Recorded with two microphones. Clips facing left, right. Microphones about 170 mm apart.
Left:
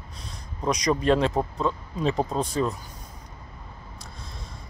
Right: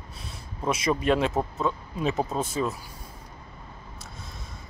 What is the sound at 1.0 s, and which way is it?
Speech, 5° right (ahead or behind).